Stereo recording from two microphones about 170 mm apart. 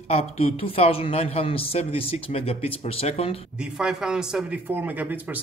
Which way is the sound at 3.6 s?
5° right (ahead or behind).